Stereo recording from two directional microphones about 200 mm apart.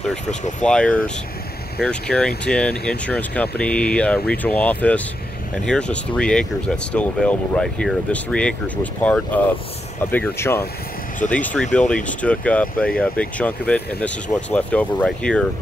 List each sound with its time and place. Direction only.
0.0 s speech: 5° left (ahead or behind)
0.4 s speech: 35° left (ahead or behind)
0.7 s speech: 5° left (ahead or behind)